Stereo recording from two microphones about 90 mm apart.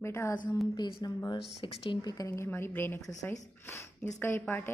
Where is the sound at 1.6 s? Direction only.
70° left (ahead or behind).